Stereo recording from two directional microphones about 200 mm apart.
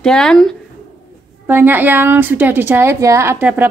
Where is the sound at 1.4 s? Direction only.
10° right (ahead or behind).